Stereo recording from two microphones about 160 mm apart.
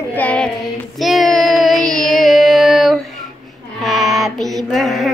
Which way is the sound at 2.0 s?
Centre (ahead or behind).